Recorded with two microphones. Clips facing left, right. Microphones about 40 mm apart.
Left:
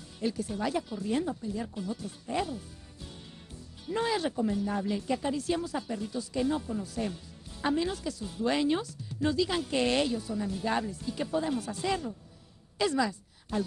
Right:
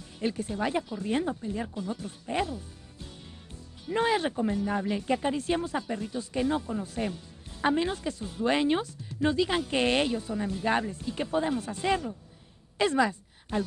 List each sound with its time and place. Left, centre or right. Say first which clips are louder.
0.2 s a woman's voice: right 2 dB; right
3.9 s a woman's voice: right 3 dB; right
12.7 s a sound: right 3 dB; right